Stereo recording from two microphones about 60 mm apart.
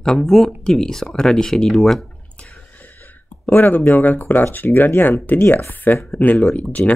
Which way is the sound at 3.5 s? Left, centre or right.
Left.